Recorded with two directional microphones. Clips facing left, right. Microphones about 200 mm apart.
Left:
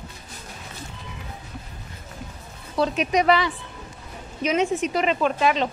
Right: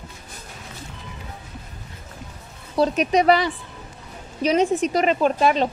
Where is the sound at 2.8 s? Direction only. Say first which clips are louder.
Right 3 dB; 40° right (ahead or behind).